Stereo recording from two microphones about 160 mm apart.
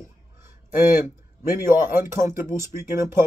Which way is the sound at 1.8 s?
15° right (ahead or behind).